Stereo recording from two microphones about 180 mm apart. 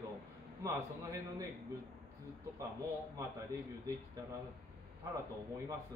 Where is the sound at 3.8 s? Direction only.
20° right (ahead or behind).